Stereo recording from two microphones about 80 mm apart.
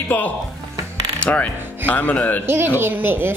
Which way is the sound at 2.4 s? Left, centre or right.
Right.